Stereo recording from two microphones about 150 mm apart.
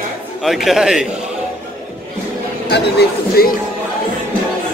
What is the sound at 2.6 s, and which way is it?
Speech, 90° left.